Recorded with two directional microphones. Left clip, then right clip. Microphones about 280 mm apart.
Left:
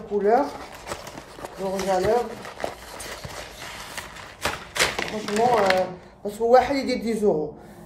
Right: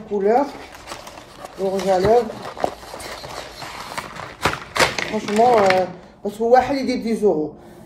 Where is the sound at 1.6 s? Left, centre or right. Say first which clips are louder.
Right 5 dB; centre.